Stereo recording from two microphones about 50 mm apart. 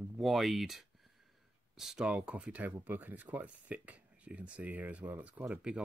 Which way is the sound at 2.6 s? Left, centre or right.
Right.